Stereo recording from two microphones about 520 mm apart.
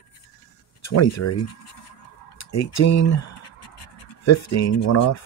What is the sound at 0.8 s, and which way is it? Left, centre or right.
Speech, left.